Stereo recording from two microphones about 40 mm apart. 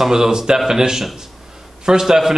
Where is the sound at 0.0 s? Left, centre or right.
Centre.